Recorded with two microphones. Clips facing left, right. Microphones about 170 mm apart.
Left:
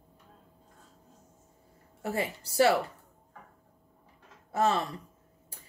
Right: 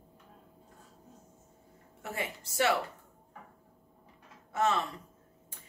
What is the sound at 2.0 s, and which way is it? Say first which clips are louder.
Speech: left 6 dB; 35° left (ahead or behind).